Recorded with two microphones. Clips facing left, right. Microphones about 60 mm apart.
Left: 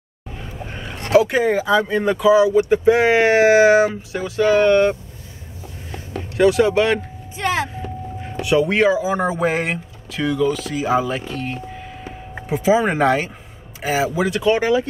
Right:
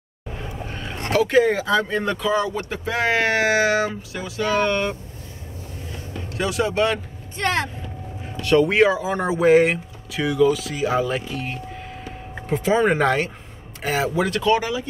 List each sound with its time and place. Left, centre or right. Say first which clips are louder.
0.7 s a sound: even; centre
1.1 s speech: left 2 dB; centre
4.1 s speech: left 6 dB; left
6.1 s speech: left 9 dB; left
7.3 s speech: left 2 dB; centre
14.6 s speech: left 8 dB; left